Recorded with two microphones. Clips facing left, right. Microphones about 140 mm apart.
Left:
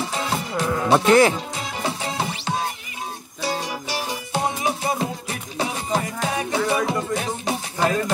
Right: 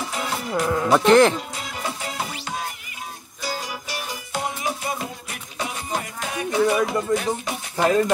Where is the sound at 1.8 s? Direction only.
30° left (ahead or behind).